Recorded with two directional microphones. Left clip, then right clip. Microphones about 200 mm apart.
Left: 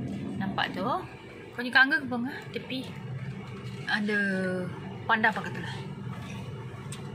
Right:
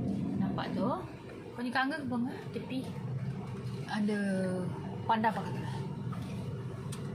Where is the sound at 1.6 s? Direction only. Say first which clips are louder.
Left 10 dB; 5° right (ahead or behind).